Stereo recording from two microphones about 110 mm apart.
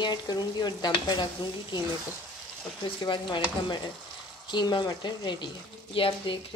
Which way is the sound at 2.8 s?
45° left (ahead or behind).